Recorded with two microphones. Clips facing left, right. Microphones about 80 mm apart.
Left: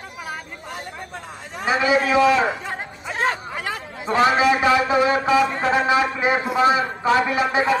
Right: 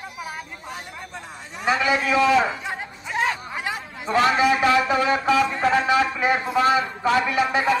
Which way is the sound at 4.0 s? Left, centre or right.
Left.